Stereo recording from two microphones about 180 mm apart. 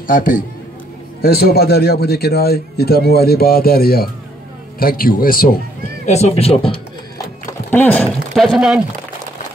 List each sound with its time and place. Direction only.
0.0 s a man's voice: 50° left (ahead or behind)
6.0 s speech: 40° left (ahead or behind)
7.7 s speech: 10° left (ahead or behind)
8.4 s speech: centre (ahead or behind)